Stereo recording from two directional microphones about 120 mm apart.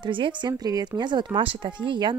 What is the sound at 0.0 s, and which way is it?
Speech, 40° right (ahead or behind).